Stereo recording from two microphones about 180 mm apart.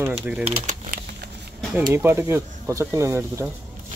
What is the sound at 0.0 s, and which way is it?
Speech, 10° right (ahead or behind).